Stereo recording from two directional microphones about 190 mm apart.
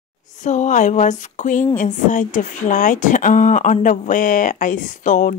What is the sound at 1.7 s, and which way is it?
A woman's voice, 40° left (ahead or behind).